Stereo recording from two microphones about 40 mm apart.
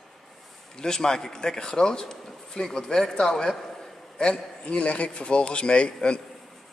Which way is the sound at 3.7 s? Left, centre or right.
Centre.